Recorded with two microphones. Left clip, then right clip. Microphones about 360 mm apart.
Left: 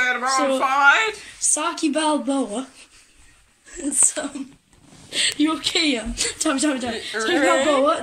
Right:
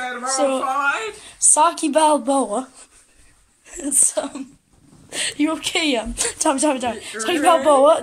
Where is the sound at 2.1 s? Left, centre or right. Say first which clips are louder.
Right 5 dB; right.